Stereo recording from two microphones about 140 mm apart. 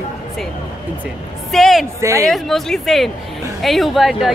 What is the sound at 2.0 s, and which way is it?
Speech, 20° right (ahead or behind).